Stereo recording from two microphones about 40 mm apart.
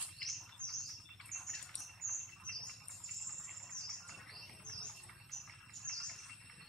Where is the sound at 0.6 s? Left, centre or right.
Left.